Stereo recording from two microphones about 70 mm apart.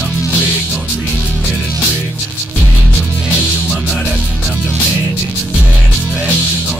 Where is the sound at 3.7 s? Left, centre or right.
Centre.